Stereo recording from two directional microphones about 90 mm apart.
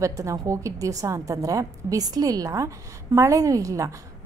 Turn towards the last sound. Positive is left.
turn(degrees=-40)  # may be behind; listen again after turning